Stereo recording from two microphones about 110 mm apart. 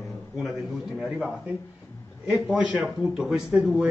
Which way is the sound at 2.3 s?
5° right (ahead or behind).